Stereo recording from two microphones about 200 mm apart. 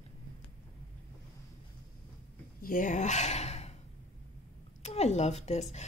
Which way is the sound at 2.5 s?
45° left (ahead or behind).